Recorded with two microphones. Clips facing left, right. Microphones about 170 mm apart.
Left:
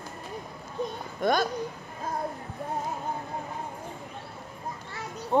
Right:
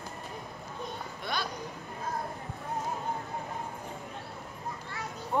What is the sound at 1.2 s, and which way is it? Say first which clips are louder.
Speech: left 11 dB; 45° left (ahead or behind).